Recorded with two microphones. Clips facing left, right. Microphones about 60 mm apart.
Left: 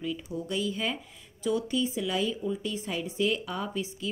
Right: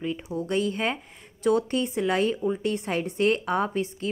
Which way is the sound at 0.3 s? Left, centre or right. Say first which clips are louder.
Right 7 dB; right.